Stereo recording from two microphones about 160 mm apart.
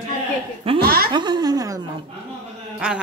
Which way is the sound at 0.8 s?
65° right (ahead or behind).